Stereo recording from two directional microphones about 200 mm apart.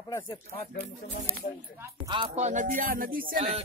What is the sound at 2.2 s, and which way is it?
Music, 35° right (ahead or behind).